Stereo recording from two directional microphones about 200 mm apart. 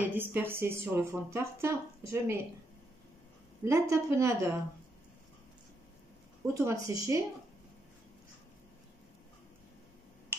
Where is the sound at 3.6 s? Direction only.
15° right (ahead or behind).